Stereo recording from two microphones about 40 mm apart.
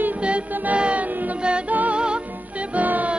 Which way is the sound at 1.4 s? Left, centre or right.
Right.